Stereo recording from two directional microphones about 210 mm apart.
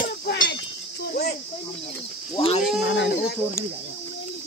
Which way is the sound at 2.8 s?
55° left (ahead or behind).